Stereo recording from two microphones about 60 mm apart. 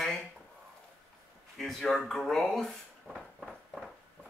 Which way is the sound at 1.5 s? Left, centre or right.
Centre.